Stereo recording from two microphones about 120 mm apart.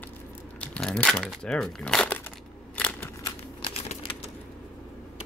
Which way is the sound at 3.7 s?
55° left (ahead or behind).